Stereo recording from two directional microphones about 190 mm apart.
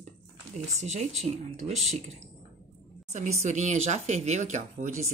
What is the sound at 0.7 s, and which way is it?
Speech, 35° right (ahead or behind).